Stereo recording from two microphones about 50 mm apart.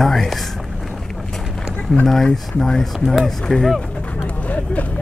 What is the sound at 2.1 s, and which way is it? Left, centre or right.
Speech, centre.